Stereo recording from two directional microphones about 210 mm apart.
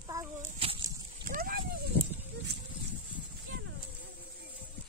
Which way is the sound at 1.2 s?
45° right (ahead or behind).